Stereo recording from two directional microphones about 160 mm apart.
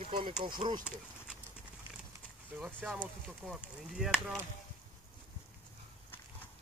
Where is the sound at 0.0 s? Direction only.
30° right (ahead or behind).